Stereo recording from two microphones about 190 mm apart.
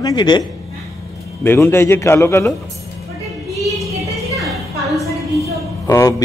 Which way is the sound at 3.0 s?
Centre (ahead or behind).